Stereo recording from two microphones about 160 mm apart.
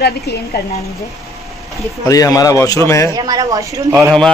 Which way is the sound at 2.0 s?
20° left (ahead or behind).